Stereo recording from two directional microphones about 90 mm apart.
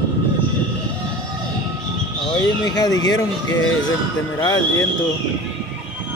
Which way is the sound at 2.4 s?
45° left (ahead or behind).